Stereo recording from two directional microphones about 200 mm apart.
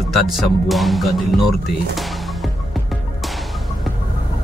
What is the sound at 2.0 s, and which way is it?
Music, centre (ahead or behind).